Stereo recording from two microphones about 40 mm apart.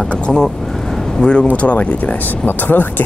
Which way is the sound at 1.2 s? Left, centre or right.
Left.